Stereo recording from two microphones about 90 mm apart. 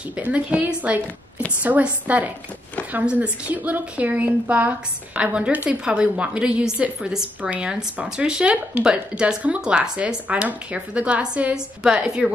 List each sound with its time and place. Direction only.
0.1 s a woman's voice: 15° right (ahead or behind)